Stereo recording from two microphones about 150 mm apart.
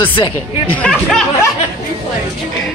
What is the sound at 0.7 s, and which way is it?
Speech, 5° left (ahead or behind).